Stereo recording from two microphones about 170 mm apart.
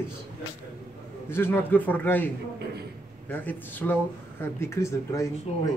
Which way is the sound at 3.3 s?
10° left (ahead or behind).